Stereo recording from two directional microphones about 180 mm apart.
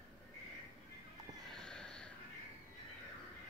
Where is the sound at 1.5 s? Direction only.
5° left (ahead or behind).